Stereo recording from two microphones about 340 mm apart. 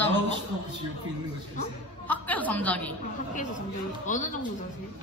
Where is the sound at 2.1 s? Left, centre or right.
Centre.